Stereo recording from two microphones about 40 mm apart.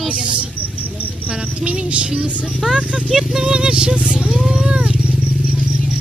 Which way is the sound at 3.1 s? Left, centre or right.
Centre.